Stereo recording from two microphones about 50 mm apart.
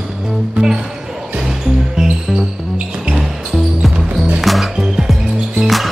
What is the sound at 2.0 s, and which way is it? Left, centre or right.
Music, centre.